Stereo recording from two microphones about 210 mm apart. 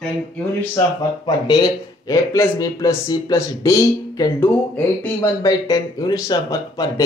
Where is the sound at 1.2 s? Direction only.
20° left (ahead or behind).